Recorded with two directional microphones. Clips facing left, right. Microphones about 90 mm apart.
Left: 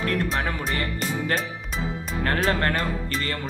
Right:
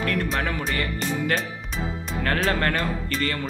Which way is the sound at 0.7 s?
35° left (ahead or behind).